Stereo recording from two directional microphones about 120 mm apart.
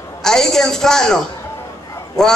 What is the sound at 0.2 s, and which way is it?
A man's voice, 5° left (ahead or behind).